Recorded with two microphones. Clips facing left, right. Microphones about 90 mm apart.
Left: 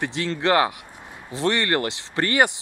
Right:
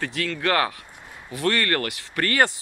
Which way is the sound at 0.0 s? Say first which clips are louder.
Left 2 dB; 25° left (ahead or behind).